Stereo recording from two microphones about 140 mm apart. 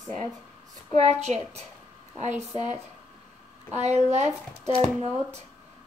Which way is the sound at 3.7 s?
55° right (ahead or behind).